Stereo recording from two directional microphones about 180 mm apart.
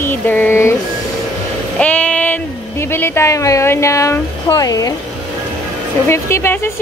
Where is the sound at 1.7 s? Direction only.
5° left (ahead or behind).